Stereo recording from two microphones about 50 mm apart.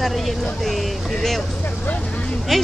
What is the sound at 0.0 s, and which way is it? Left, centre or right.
Speech, centre.